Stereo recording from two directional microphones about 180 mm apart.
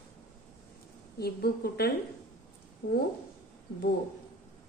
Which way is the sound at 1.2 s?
60° left (ahead or behind).